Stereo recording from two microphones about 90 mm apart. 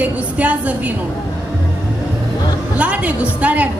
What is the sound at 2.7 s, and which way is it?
Speech, 15° right (ahead or behind).